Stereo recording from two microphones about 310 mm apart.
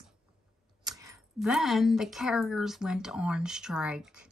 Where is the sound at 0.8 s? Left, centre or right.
Centre.